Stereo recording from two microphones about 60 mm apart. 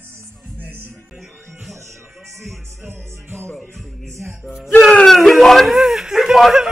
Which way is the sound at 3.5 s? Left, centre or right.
Centre.